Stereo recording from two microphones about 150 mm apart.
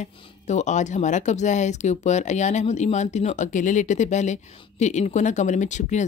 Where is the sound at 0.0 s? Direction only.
50° left (ahead or behind).